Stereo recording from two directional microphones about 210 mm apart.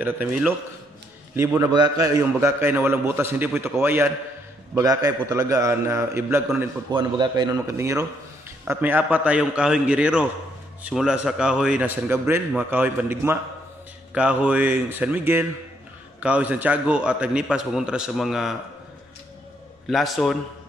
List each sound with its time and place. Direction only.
0.0 s a man's voice: 10° right (ahead or behind)
6.9 s a man's voice: 20° right (ahead or behind); by 18.5 s centre (ahead or behind)
19.9 s a man's voice: centre (ahead or behind)